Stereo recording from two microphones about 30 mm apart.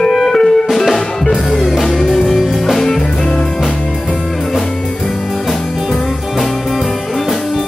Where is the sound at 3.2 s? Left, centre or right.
Left.